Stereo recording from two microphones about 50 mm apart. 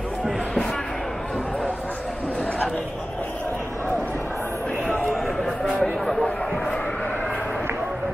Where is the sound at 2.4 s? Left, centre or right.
Left.